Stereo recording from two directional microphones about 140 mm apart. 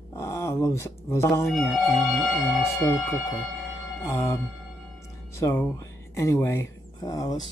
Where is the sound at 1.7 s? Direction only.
Centre (ahead or behind).